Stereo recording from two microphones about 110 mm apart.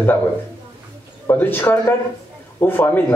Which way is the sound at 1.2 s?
20° left (ahead or behind).